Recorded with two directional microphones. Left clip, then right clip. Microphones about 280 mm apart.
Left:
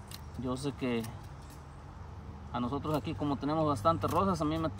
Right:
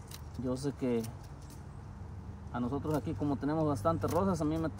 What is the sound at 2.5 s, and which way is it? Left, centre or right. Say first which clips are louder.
Speech: left 1 dB; centre.